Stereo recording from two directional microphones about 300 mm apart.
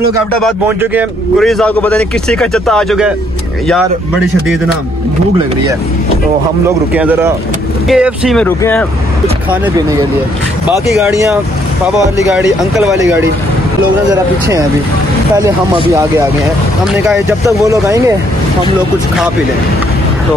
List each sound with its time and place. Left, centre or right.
0.4 s a man's voice: centre
6.9 s a man's voice: centre
9.5 s a man's voice: centre
14.1 s speech: centre